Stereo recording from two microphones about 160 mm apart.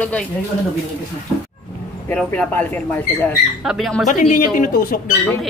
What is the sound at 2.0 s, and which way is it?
Speech, 5° left (ahead or behind).